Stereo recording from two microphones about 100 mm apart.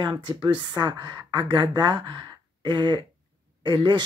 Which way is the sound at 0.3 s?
45° right (ahead or behind).